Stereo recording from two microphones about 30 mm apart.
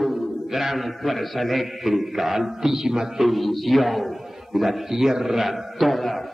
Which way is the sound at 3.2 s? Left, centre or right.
Centre.